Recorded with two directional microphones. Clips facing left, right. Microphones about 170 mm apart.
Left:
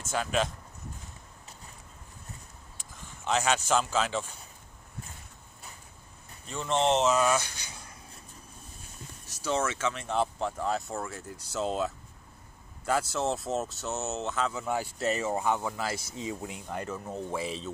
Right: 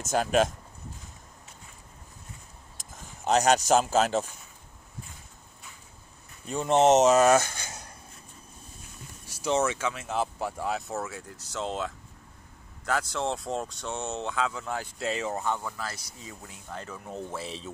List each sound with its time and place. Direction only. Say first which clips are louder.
0.0 s speech: right 5 dB; 45° right (ahead or behind)
2.8 s speech: right 5 dB; 40° right (ahead or behind)
6.5 s speech: right 6 dB; 45° right (ahead or behind)
9.3 s speech: right 3 dB; 15° right (ahead or behind); by 15.7 s 15° left (ahead or behind)
15.7 s speech: left 4 dB; 25° left (ahead or behind); by 17.6 s 5° left (ahead or behind)